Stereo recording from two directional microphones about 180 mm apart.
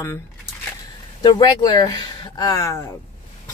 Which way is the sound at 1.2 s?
25° left (ahead or behind).